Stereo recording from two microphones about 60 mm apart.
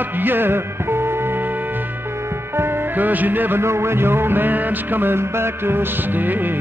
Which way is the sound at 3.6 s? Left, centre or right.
Right.